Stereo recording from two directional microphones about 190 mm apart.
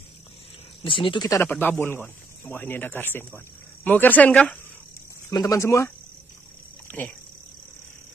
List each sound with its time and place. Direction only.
0.8 s speech: 25° left (ahead or behind); by 4.6 s 5° left (ahead or behind)
5.3 s speech: 15° left (ahead or behind)
6.9 s a sound: 10° left (ahead or behind)